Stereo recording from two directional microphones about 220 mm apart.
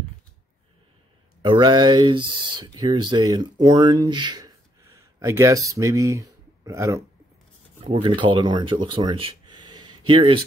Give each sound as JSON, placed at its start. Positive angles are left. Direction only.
{"t": 1.4, "sound": "speech", "side_deg": -20}